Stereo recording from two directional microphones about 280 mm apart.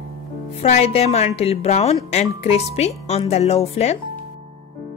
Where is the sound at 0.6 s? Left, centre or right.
Left.